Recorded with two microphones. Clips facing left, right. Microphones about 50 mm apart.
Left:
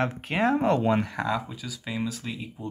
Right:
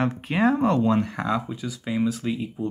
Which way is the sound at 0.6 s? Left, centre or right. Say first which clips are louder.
Right 2 dB; centre.